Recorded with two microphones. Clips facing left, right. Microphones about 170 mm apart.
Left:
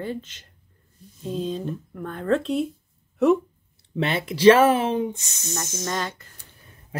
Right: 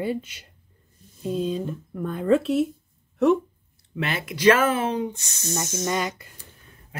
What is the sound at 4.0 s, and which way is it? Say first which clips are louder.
Speech: left 4 dB; 30° left (ahead or behind).